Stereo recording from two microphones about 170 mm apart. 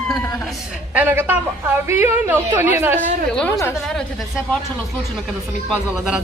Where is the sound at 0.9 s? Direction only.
10° right (ahead or behind).